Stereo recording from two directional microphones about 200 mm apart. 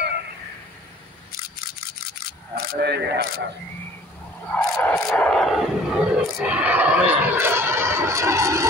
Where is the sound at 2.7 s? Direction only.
55° right (ahead or behind).